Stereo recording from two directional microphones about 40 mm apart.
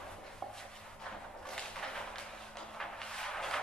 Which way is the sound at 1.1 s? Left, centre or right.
Left.